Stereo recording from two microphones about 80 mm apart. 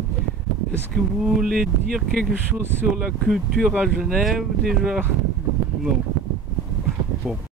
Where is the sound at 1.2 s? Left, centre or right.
Centre.